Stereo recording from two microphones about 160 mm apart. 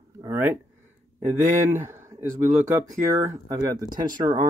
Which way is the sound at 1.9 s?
15° right (ahead or behind).